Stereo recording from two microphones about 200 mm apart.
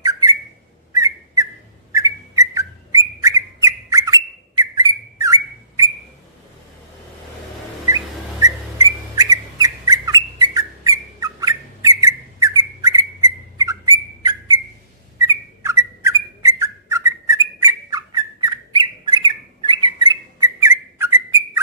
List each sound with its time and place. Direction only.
0.0 s whistle: 15° right (ahead or behind)
7.8 s whistle: 15° right (ahead or behind)
15.1 s bird: 15° right (ahead or behind)